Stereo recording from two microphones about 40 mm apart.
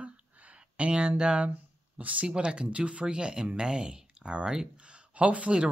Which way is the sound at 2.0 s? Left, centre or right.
Right.